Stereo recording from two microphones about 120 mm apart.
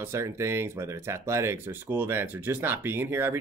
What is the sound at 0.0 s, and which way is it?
Speech, 20° right (ahead or behind).